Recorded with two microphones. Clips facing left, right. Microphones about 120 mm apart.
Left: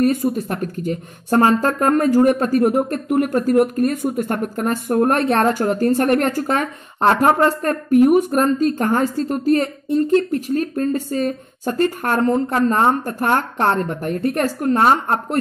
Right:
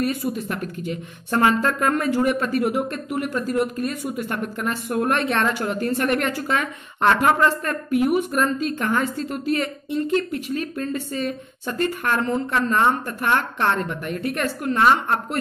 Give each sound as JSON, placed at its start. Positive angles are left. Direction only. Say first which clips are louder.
{"t": 0.0, "sound": "speech", "louder": "left 6 dB", "side_deg": 45}